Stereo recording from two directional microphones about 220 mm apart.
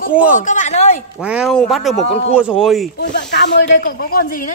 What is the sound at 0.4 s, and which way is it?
Speech, 35° left (ahead or behind).